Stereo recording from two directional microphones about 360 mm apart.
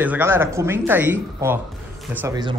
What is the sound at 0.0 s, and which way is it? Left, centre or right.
Speech, centre.